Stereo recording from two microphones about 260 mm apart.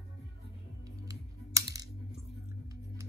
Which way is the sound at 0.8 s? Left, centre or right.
Centre.